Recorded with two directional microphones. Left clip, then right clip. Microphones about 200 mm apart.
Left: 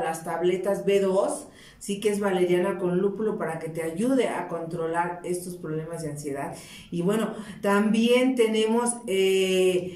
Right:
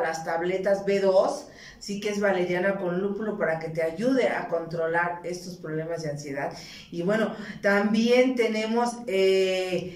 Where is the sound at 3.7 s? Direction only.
15° left (ahead or behind).